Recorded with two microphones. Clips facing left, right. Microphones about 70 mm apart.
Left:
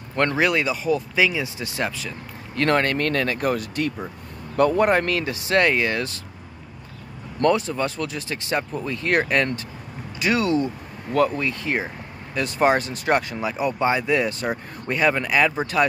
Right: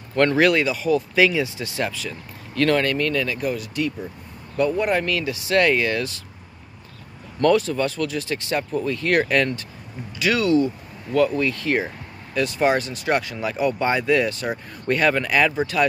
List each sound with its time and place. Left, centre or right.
0.1 s speech: left
7.4 s speech: left
11.3 s speech: left
12.4 s speech: left
13.4 s speech: left